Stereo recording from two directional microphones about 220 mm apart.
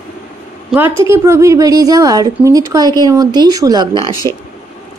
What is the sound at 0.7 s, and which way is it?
A woman's voice, 10° right (ahead or behind).